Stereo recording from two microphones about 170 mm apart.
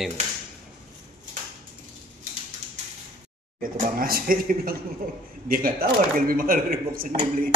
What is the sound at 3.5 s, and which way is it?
Speech, 55° right (ahead or behind).